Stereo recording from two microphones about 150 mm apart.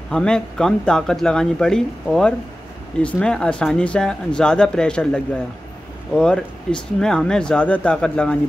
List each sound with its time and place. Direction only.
0.1 s speech: 5° left (ahead or behind)
3.0 s speech: 5° left (ahead or behind)